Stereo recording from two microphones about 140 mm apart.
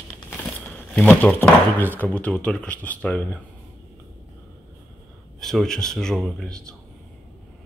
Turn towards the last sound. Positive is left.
turn(degrees=5)  # may be behind; listen again after turning